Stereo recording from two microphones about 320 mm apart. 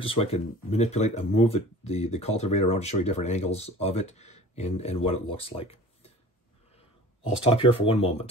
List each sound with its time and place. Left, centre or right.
0.0 s speech: centre
5.4 s a sound: centre
7.4 s speech: centre